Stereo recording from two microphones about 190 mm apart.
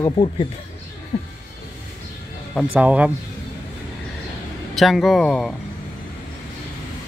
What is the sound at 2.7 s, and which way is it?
Speech, 5° right (ahead or behind).